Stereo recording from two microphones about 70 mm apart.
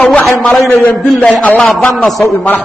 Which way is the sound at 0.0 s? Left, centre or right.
Left.